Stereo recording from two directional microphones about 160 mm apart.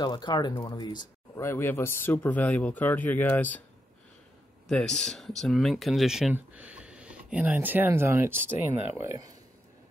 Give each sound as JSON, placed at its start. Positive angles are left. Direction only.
{"t": 0.0, "sound": "speech", "side_deg": 25}
{"t": 4.6, "sound": "speech", "side_deg": 5}